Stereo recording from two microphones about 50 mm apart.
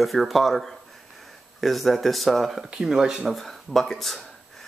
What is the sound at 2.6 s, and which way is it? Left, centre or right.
Speech, centre.